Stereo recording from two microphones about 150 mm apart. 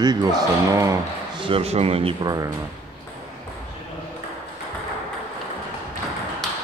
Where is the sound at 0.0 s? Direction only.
25° right (ahead or behind).